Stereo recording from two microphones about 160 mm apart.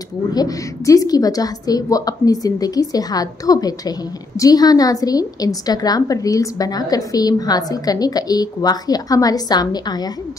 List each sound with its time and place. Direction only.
0.3 s a woman's voice: 25° left (ahead or behind)